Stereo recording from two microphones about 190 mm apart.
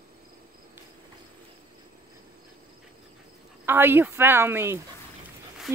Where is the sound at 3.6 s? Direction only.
10° right (ahead or behind).